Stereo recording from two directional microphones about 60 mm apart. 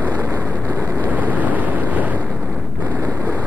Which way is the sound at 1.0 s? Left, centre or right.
Right.